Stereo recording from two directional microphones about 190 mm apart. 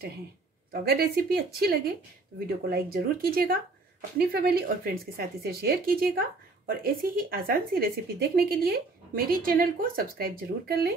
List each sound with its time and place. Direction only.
0.8 s speech: 55° right (ahead or behind)